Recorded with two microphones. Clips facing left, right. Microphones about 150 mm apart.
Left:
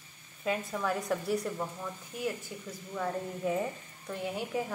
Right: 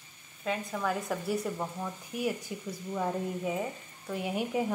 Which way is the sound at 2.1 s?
15° right (ahead or behind).